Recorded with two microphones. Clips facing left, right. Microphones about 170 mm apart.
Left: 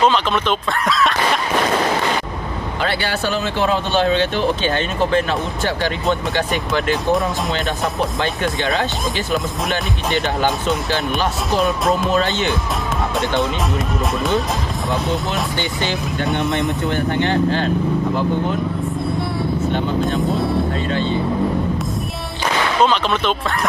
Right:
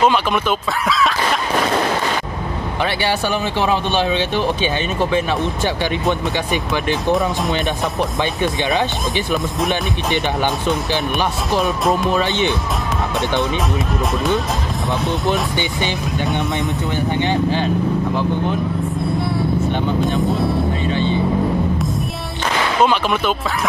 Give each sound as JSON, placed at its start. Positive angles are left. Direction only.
{"t": 0.0, "sound": "speech", "side_deg": -10}
{"t": 0.8, "sound": "a sound", "side_deg": 0}
{"t": 2.8, "sound": "speech", "side_deg": -15}
{"t": 8.2, "sound": "speech", "side_deg": -20}
{"t": 15.5, "sound": "speech", "side_deg": -15}
{"t": 19.1, "sound": "vehicle", "side_deg": 0}
{"t": 20.2, "sound": "speech", "side_deg": 0}
{"t": 22.8, "sound": "speech", "side_deg": -10}